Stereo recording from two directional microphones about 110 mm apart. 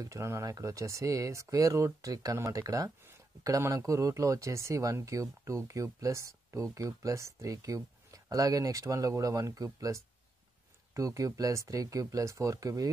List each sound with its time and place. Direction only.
0.0 s speech: 25° right (ahead or behind)